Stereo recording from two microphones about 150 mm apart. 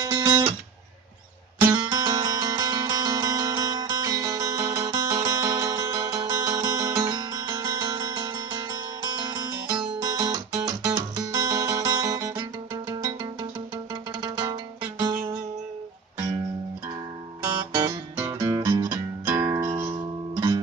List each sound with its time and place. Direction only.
0.0 s guitar: 25° right (ahead or behind)
1.7 s music: 25° right (ahead or behind)
17.7 s music: 25° right (ahead or behind)
20.3 s guitar: 30° right (ahead or behind)